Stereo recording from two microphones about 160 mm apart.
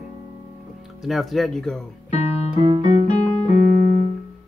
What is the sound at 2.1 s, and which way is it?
Music, 45° left (ahead or behind).